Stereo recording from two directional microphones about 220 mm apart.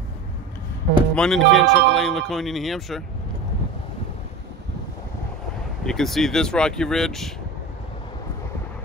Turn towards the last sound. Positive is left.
turn(degrees=0)  # may be behind; listen again after turning